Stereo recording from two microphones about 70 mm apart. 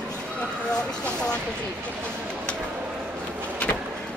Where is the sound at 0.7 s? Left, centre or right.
Centre.